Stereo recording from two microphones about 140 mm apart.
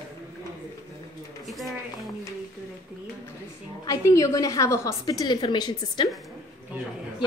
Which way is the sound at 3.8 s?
25° left (ahead or behind).